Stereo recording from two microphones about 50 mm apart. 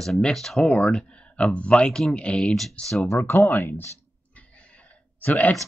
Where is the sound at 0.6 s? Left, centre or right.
Left.